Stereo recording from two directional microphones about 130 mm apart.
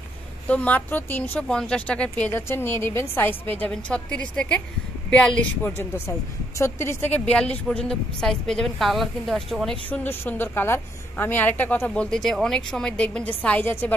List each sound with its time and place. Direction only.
0.5 s speech: 10° left (ahead or behind)
5.8 s a woman's voice: 20° left (ahead or behind); by 9.8 s centre (ahead or behind)
9.8 s speech: 15° left (ahead or behind)